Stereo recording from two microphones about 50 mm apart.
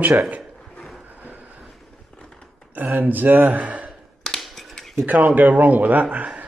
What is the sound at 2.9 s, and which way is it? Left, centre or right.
Speech, right.